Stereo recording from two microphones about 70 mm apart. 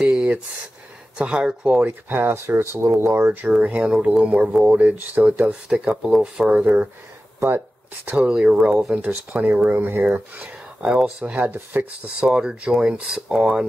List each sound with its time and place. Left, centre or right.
0.0 s a sound: centre
1.1 s speech: centre
1.7 s speech: right
3.3 s speech: centre
6.5 s speech: right
7.3 s a sound: right
8.2 s speech: centre
10.9 s speech: centre
11.2 s speech: right